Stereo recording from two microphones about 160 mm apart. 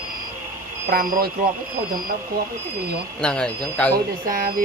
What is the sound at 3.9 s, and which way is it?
Speech, 60° right (ahead or behind).